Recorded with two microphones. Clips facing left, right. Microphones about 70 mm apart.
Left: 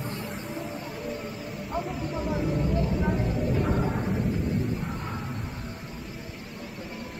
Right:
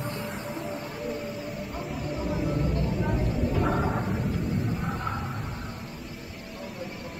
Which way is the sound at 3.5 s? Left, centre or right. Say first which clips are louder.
Right 1 dB; right.